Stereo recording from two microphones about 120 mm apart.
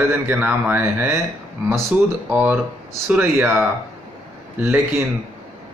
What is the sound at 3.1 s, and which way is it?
A man's voice, 10° right (ahead or behind).